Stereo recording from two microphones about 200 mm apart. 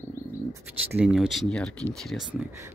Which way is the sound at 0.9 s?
5° right (ahead or behind).